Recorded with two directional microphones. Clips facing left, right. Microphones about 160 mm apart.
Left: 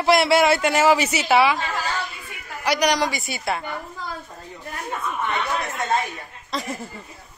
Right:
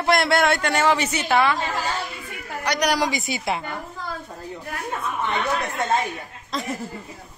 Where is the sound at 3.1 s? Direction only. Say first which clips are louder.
Right 1 dB; 15° right (ahead or behind).